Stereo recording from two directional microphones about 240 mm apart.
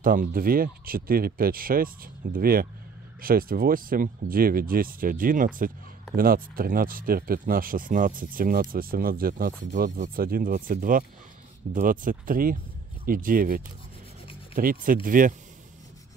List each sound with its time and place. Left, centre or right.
0.0 s speech: right